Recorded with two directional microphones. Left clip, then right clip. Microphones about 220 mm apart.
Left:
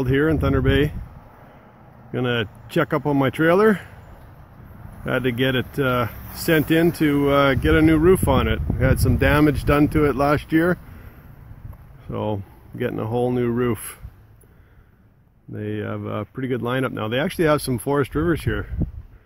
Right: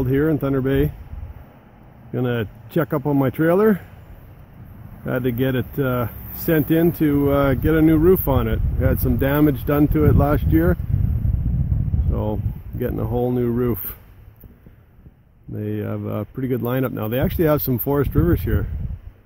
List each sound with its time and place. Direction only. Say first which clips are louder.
0.0 s speech: even; centre (ahead or behind)
2.1 s speech: left 1 dB; 5° right (ahead or behind)
5.0 s speech: left 1 dB; 5° right (ahead or behind)
12.1 s speech: left 1 dB; centre (ahead or behind)
15.5 s speech: right 1 dB; 10° right (ahead or behind)